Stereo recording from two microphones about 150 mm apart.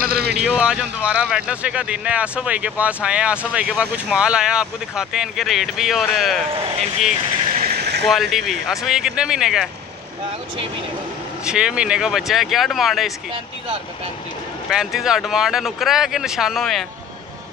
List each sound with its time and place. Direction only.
0.0 s vehicle: 90° right
0.3 s speech: 5° right (ahead or behind)
7.6 s vehicle: 90° right
8.0 s speech: centre (ahead or behind)
11.4 s speech: 5° right (ahead or behind)
14.7 s speech: centre (ahead or behind)